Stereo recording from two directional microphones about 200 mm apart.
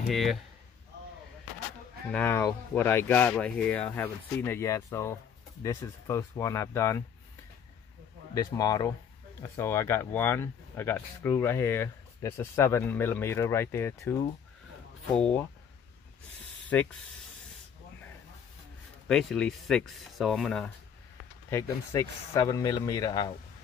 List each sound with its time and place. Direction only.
0.1 s speech: centre (ahead or behind)
2.0 s speech: 10° left (ahead or behind)
8.4 s speech: 20° left (ahead or behind)
16.7 s speech: 10° left (ahead or behind)
19.0 s speech: centre (ahead or behind)
21.5 s speech: 15° left (ahead or behind)